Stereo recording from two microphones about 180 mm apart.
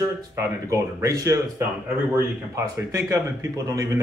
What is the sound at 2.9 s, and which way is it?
Speech, 15° right (ahead or behind).